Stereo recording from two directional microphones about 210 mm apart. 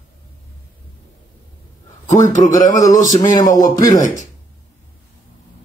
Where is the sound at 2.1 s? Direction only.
35° left (ahead or behind).